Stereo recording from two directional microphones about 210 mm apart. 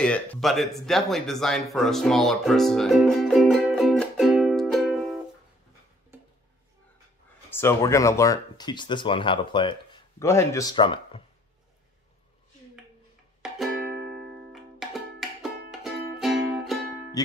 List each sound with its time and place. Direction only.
0.0 s speech: 5° left (ahead or behind)
1.7 s music: centre (ahead or behind)
7.5 s speech: 15° left (ahead or behind)
13.4 s music: 5° right (ahead or behind)
13.7 s music: 50° right (ahead or behind)
14.5 s music: centre (ahead or behind)